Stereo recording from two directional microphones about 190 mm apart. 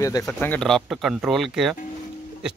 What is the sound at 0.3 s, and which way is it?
Speech, 5° left (ahead or behind).